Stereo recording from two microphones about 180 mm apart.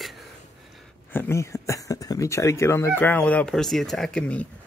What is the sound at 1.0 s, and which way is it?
Speech, 10° left (ahead or behind).